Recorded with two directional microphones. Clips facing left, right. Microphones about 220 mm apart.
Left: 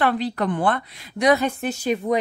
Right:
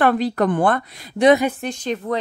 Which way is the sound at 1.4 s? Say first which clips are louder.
Right 2 dB; 5° right (ahead or behind).